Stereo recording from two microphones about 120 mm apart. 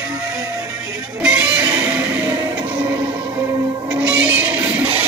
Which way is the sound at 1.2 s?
10° right (ahead or behind).